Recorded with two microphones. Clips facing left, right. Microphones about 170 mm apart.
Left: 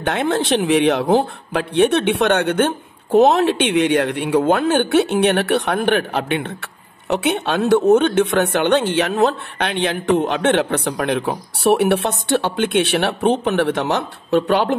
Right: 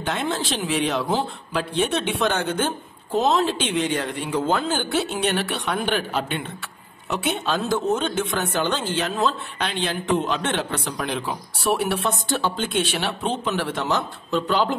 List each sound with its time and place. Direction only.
0.0 s speech: 60° left (ahead or behind)